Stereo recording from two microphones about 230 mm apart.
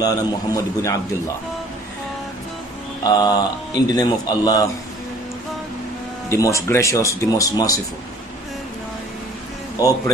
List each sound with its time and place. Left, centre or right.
0.0 s speech: centre
3.0 s speech: centre
6.3 s speech: centre